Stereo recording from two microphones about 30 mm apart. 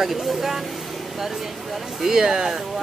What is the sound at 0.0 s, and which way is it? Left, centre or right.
Speech, centre.